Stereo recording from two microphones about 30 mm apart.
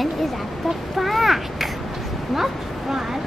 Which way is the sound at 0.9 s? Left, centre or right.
Centre.